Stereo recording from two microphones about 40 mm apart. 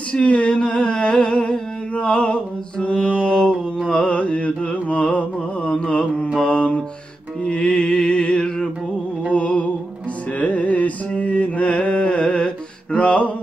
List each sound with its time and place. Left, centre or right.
0.1 s a sound: left
4.2 s mantra: left
4.8 s music: left
6.4 s mantra: left
7.4 s music: left
10.4 s carnatic music: left